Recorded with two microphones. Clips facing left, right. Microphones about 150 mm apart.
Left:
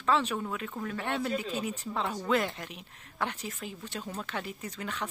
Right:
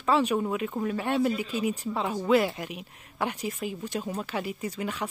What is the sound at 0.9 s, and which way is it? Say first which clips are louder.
Speech: right 5 dB; 10° right (ahead or behind).